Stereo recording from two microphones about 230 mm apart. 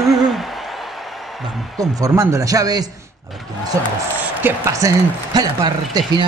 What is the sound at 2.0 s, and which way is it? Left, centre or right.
Speech, centre.